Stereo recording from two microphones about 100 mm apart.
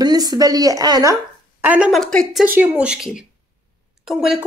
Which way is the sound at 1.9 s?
5° left (ahead or behind).